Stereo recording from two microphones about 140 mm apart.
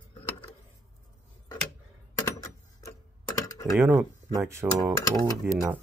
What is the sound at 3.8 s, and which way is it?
Speech, 15° right (ahead or behind).